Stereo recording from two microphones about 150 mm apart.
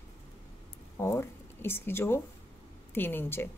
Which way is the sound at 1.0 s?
15° left (ahead or behind).